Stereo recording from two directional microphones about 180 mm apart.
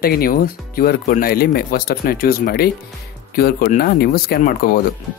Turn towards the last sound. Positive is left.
turn(degrees=55)  # may be behind; listen again after turning